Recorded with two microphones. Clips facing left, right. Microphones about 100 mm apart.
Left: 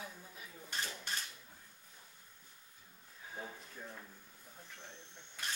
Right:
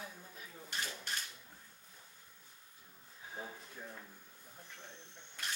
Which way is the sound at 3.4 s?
5° right (ahead or behind).